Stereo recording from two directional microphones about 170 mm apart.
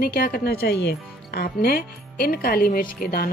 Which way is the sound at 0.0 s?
65° left (ahead or behind).